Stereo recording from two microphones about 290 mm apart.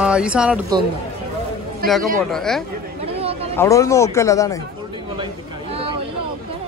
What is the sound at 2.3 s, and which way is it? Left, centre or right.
Speech, centre.